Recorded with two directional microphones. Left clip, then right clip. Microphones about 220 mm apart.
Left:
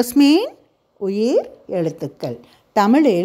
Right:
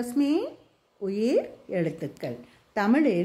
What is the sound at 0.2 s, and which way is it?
Speech, 45° left (ahead or behind).